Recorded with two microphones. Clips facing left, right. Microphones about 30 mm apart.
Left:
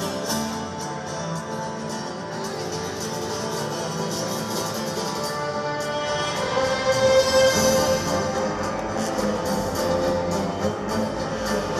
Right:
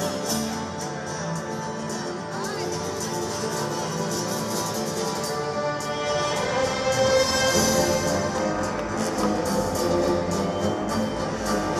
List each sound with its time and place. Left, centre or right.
6.0 s music: centre